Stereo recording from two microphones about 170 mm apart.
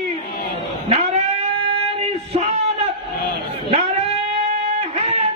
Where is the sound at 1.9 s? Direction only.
40° right (ahead or behind).